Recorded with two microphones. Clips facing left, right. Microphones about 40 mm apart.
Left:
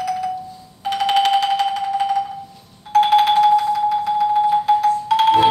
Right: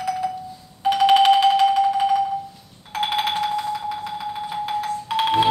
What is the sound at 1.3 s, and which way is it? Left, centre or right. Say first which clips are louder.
Music: right 2 dB; centre.